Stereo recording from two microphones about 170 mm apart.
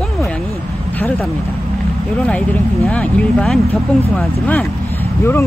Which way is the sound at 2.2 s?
5° left (ahead or behind).